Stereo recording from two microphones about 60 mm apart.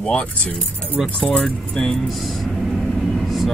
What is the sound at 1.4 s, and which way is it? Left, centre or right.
Speech, centre.